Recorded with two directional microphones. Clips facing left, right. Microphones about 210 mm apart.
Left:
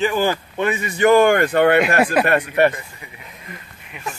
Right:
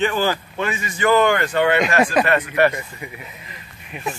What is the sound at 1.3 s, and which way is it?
Speech, 55° left (ahead or behind).